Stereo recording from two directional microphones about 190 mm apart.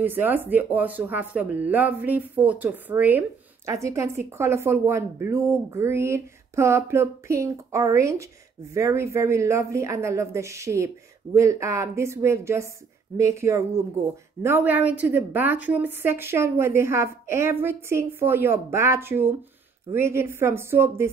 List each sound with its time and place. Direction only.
0.0 s speech: 10° right (ahead or behind)